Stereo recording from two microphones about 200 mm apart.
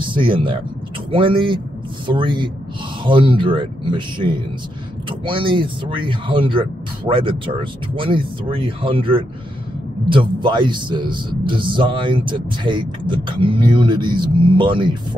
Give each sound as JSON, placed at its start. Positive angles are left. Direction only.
{"t": 0.0, "sound": "a man's voice", "side_deg": -25}